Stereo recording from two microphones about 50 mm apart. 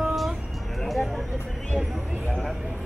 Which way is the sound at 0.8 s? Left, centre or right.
Centre.